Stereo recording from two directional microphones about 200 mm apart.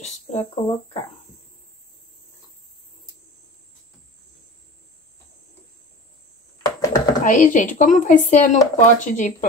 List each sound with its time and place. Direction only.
0.3 s speech: 30° left (ahead or behind)
6.6 s a sound: 15° left (ahead or behind)
7.2 s speech: 40° left (ahead or behind)